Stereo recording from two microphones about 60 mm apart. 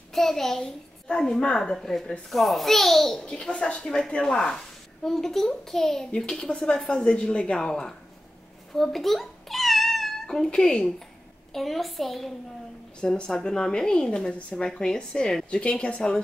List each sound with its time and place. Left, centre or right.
0.1 s a child's voice: centre
3.3 s a child's voice: centre
8.7 s cat: centre
11.5 s a child's voice: centre
13.0 s a child's voice: centre